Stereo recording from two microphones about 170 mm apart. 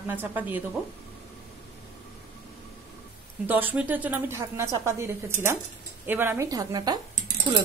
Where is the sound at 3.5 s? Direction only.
10° right (ahead or behind); by 7.6 s 25° right (ahead or behind).